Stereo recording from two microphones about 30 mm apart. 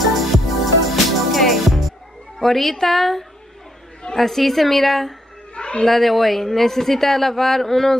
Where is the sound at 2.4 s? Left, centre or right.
Centre.